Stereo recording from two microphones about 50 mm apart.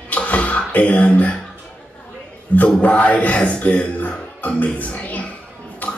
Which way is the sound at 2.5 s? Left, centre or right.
Left.